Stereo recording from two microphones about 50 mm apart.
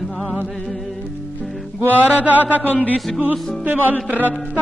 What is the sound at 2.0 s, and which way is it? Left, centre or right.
Music, right.